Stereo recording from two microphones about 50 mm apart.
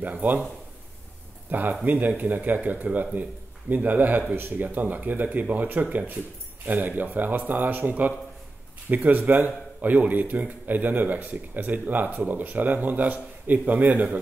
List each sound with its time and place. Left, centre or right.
0.0 s speech: right
1.5 s a man's voice: right